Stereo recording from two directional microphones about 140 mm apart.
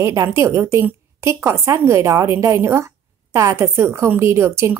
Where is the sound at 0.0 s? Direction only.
20° right (ahead or behind).